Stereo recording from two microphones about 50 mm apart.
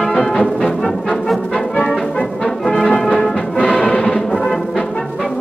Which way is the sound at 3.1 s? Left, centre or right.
Centre.